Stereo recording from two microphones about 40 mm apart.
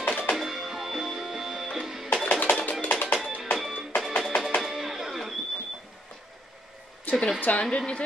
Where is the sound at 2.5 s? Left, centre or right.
Left.